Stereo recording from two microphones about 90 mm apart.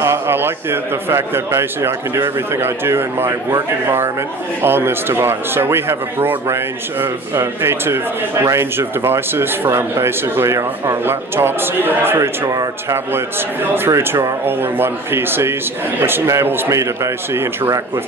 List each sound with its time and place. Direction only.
0.0 s a man's voice: 30° right (ahead or behind)